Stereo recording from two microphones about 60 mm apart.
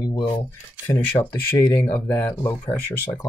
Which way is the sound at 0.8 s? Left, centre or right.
Left.